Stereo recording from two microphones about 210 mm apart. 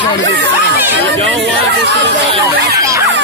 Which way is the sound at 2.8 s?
15° right (ahead or behind).